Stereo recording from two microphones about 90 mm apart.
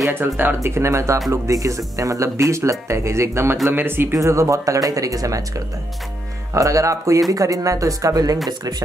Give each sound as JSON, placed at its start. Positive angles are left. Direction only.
{"t": 0.1, "sound": "speech", "side_deg": -20}
{"t": 6.5, "sound": "speech", "side_deg": -35}